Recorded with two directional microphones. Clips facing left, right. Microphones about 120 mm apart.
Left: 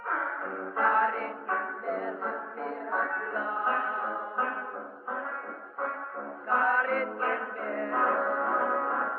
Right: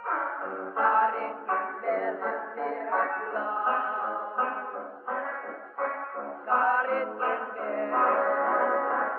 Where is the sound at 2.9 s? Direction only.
65° right (ahead or behind).